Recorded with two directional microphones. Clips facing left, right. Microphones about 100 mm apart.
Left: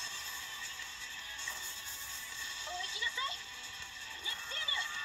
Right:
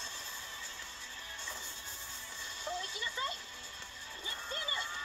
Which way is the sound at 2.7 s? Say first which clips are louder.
Right 2 dB; 45° right (ahead or behind).